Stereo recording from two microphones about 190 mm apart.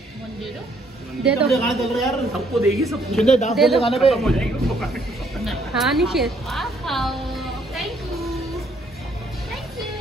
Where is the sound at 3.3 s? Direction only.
35° left (ahead or behind).